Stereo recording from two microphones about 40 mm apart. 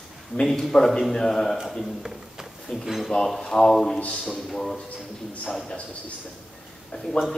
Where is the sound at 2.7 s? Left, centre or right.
Centre.